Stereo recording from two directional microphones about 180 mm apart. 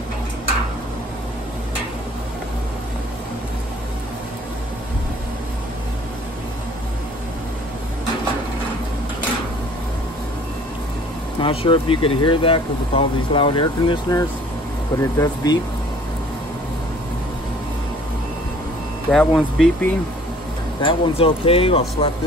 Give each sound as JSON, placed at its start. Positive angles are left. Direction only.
{"t": 11.4, "sound": "speech", "side_deg": 30}
{"t": 19.0, "sound": "speech", "side_deg": 0}
{"t": 20.8, "sound": "speech", "side_deg": 30}